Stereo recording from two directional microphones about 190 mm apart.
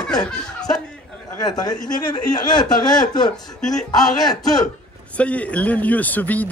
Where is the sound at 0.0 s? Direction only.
5° left (ahead or behind).